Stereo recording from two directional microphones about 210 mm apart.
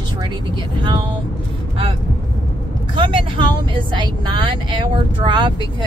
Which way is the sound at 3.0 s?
25° right (ahead or behind).